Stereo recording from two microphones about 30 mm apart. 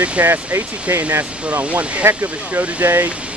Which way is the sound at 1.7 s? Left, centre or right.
Right.